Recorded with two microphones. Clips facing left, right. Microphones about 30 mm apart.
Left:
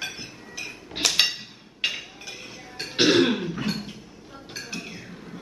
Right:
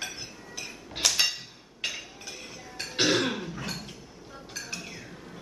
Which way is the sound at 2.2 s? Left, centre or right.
Centre.